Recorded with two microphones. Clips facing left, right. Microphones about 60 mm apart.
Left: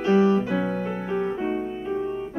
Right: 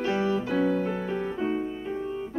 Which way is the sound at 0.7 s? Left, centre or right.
Left.